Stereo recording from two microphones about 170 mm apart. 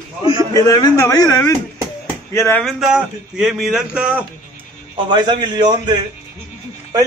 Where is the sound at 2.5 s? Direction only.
Centre (ahead or behind).